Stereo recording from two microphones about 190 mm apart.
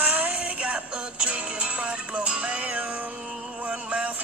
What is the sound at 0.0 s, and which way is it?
Synthetic singing, 10° right (ahead or behind).